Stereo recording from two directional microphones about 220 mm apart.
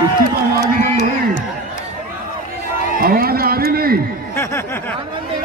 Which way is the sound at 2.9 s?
40° right (ahead or behind).